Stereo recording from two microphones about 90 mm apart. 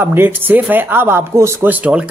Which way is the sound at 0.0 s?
25° right (ahead or behind).